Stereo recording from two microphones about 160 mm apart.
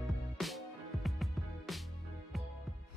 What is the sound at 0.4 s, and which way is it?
Music, centre (ahead or behind).